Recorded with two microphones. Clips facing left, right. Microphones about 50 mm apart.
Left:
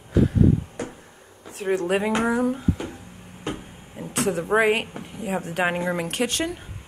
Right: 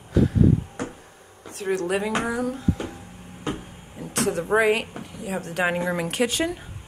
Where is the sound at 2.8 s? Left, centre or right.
Centre.